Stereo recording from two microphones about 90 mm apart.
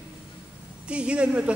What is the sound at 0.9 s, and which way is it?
Speech, 10° right (ahead or behind).